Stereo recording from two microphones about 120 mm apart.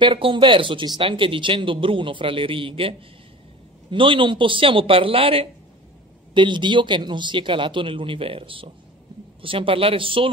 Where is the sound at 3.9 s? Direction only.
45° right (ahead or behind).